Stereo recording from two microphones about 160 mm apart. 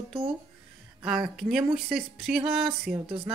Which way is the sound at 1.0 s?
5° right (ahead or behind).